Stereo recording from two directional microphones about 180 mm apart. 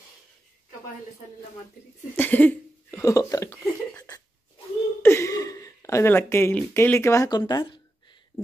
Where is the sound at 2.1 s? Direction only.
10° left (ahead or behind).